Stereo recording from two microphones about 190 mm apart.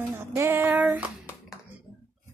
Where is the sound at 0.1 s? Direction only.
10° right (ahead or behind).